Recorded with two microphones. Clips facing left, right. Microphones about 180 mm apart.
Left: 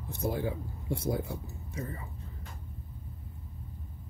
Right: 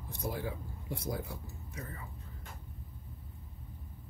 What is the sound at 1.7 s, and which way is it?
Speech, 25° left (ahead or behind).